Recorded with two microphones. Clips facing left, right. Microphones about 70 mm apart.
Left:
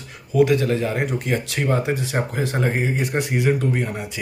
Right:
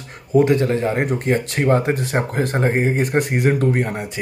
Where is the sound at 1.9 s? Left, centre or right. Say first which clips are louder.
Right 3 dB; right.